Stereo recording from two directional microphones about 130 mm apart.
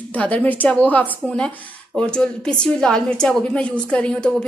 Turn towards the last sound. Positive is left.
turn(degrees=10)  # may be behind; listen again after turning